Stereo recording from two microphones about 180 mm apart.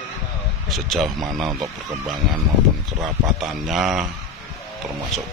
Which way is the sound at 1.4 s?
20° right (ahead or behind).